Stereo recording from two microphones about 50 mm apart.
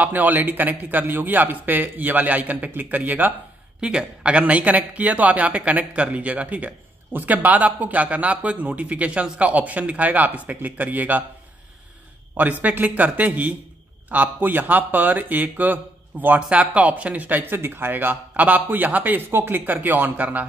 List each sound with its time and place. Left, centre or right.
0.0 s speech: right
3.8 s speech: right
12.6 s speech: right
16.4 s speech: right